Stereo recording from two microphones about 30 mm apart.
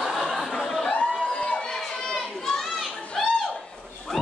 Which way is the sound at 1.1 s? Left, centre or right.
Left.